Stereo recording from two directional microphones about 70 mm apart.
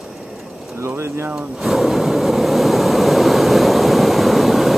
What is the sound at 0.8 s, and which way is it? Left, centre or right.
Speech, right.